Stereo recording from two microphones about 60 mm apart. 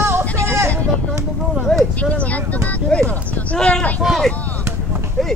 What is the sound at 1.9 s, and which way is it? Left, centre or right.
Speech, left.